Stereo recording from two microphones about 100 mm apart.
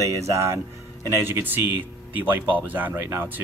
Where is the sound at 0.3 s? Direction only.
30° right (ahead or behind).